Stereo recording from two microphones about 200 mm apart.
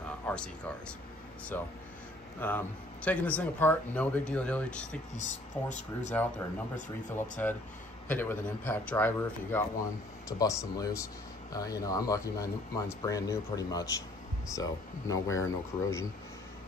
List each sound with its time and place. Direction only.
0.3 s a man's voice: 5° left (ahead or behind)
5.1 s speech: 35° left (ahead or behind)
7.2 s a man's voice: 10° left (ahead or behind)